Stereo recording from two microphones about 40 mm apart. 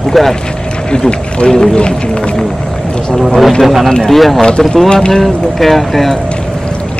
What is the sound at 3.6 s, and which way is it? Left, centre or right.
Speech, centre.